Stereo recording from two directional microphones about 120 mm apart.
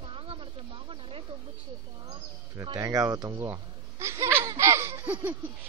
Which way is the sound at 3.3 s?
20° right (ahead or behind).